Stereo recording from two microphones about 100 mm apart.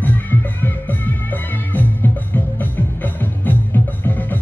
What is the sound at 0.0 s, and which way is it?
Music, 20° left (ahead or behind).